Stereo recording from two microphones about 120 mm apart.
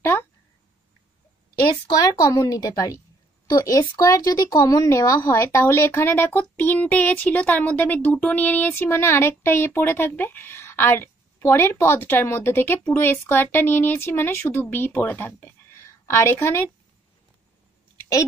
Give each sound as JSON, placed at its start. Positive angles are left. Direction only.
{"t": 1.7, "sound": "speech", "side_deg": 30}